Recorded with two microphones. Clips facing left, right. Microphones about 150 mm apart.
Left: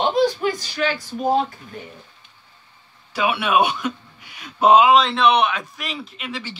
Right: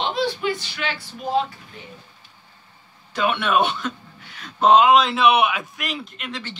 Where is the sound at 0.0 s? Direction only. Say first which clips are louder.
Left 5 dB; 45° left (ahead or behind).